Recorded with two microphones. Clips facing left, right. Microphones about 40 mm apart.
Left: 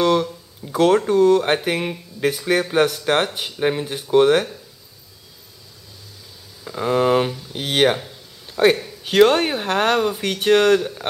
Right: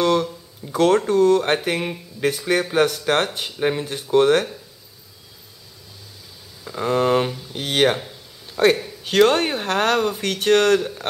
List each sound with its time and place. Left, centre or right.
0.0 s speech: centre
6.6 s speech: centre